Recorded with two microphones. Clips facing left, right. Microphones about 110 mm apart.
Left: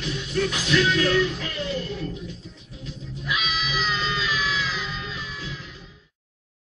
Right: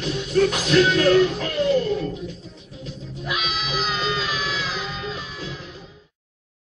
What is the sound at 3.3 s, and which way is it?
Music, 45° right (ahead or behind).